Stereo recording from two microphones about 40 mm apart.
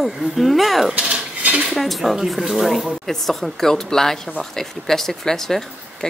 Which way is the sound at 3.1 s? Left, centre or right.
Centre.